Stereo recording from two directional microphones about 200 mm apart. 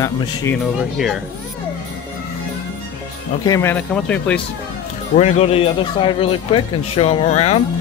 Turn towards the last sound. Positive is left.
turn(degrees=35)  # may be behind; listen again after turning